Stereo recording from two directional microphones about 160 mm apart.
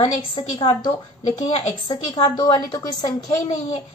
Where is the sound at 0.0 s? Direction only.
35° left (ahead or behind).